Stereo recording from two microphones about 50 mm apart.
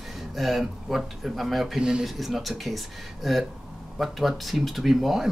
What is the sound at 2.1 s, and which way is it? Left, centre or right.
Speech, centre.